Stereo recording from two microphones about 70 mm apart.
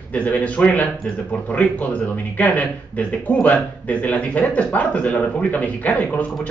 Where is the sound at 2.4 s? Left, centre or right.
Left.